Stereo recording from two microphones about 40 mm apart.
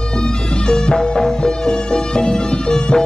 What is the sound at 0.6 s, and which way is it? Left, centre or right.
Music, centre.